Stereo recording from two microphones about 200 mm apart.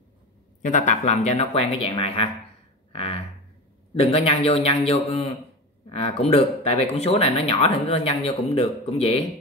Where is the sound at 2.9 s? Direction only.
30° left (ahead or behind).